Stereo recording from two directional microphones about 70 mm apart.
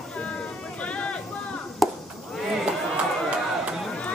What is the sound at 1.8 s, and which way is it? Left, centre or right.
Chop, centre.